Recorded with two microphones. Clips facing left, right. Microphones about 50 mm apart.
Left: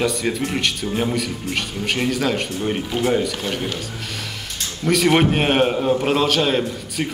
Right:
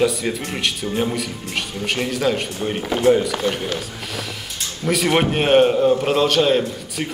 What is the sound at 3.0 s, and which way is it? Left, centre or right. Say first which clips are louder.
Speech: right 5 dB; centre.